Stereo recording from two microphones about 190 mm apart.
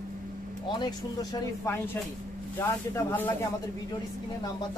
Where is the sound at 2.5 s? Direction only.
10° left (ahead or behind).